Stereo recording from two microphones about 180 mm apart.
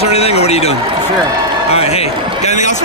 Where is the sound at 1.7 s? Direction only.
35° left (ahead or behind).